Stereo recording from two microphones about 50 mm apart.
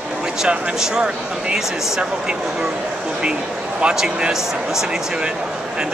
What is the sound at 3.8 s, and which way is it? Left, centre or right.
Speech, centre.